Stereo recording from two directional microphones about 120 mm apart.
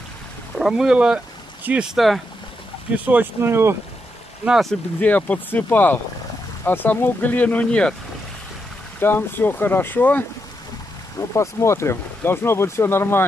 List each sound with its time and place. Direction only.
0.6 s speech: 5° right (ahead or behind)
2.9 s speech: 15° right (ahead or behind)
4.5 s speech: centre (ahead or behind)
5.0 s speech: 15° left (ahead or behind)
9.0 s speech: 15° left (ahead or behind)